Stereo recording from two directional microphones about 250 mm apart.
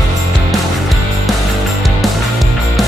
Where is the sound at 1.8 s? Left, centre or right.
Centre.